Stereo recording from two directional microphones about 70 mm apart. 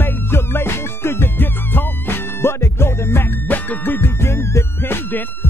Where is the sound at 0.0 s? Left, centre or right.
Left.